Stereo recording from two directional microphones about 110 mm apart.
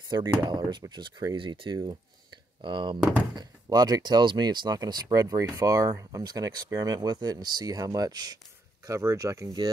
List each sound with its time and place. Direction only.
0.1 s speech: 40° right (ahead or behind)
3.0 s speech: 10° right (ahead or behind)
3.3 s speech: 35° right (ahead or behind)